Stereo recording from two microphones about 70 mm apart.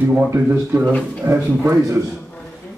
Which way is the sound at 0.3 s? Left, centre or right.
Right.